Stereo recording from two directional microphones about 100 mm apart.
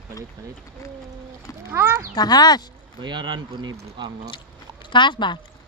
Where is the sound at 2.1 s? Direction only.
40° left (ahead or behind).